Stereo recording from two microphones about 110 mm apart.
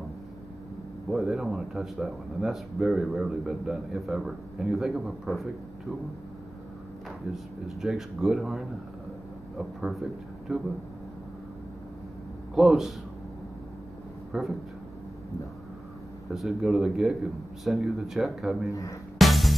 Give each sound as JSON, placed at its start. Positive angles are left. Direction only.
{"t": 1.1, "sound": "speech", "side_deg": -5}
{"t": 7.6, "sound": "speech", "side_deg": -5}
{"t": 12.5, "sound": "speech", "side_deg": -5}
{"t": 14.3, "sound": "speech", "side_deg": -5}
{"t": 16.3, "sound": "speech", "side_deg": -5}
{"t": 18.7, "sound": "speech", "side_deg": 30}
{"t": 19.1, "sound": "music", "side_deg": 0}